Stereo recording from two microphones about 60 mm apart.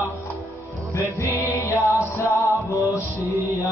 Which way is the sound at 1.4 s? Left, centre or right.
Left.